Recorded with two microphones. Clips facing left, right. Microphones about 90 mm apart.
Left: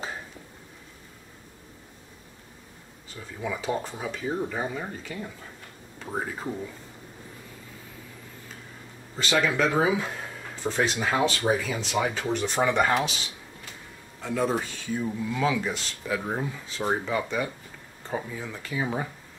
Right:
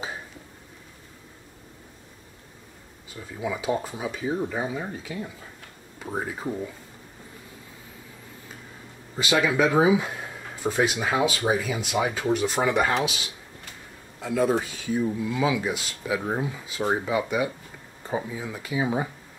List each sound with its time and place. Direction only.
3.3 s speech: 10° right (ahead or behind)
9.1 s speech: 10° right (ahead or behind)
14.2 s speech: 5° right (ahead or behind)